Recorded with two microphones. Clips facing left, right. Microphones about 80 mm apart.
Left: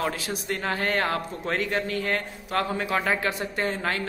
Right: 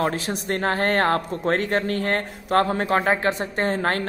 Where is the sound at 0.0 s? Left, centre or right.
Right.